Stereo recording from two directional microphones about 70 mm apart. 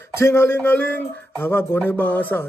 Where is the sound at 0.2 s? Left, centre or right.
Left.